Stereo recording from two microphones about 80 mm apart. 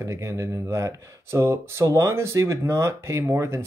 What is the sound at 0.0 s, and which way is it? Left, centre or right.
Speech, right.